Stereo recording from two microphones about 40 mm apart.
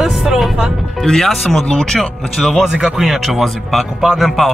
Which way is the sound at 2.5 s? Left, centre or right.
Centre.